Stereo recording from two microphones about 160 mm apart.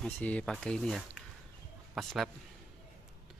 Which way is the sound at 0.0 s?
10° left (ahead or behind).